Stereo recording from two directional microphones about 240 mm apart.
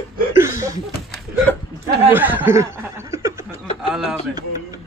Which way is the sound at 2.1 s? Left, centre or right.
Centre.